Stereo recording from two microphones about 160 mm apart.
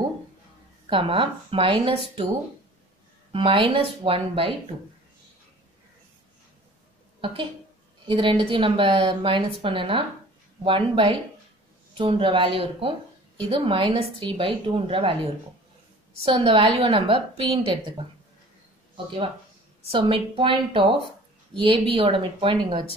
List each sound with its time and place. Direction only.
0.8 s a woman's voice: 30° right (ahead or behind)
3.3 s a woman's voice: 35° right (ahead or behind)
7.2 s a woman's voice: 35° right (ahead or behind)
16.3 s a woman's voice: 30° right (ahead or behind)
19.8 s a woman's voice: 35° right (ahead or behind)